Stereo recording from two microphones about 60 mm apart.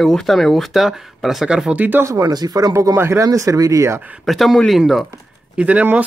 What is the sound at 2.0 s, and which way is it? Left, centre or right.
Speech, right.